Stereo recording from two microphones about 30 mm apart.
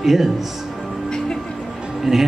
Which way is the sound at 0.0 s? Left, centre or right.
Centre.